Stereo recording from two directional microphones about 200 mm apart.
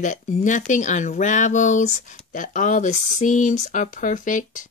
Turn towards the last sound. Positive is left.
turn(degrees=40)  # may be behind; listen again after turning